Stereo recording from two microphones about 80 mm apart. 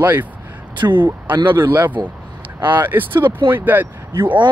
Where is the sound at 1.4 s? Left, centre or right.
Right.